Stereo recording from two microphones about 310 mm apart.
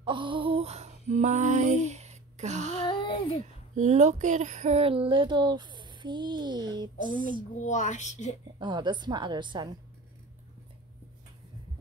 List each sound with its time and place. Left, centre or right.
0.0 s female singing: centre
2.8 s child singing: centre
3.7 s speech: right
7.6 s a woman's voice: left
8.5 s speech: centre